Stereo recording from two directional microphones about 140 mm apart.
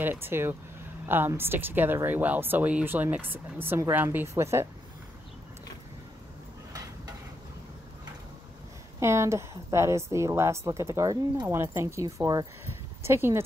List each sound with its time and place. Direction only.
0.0 s speech: 15° right (ahead or behind)
9.0 s a woman's voice: 20° right (ahead or behind)